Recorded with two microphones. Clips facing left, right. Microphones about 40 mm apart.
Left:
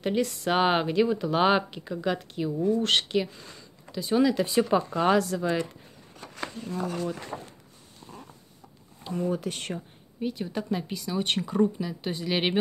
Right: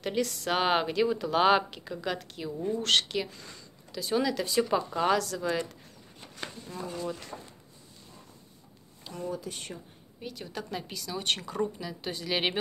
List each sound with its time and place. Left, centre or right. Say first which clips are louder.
0.0 s speech: left 4 dB; centre
6.2 s a sound: left 5 dB; left
6.8 s speech: left 5 dB; left
9.0 s speech: left 8 dB; centre
9.3 s speech: left 6 dB; left
10.2 s speech: left 8 dB; centre